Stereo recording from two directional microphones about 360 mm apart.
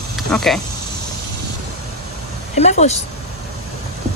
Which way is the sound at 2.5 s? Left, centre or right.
Centre.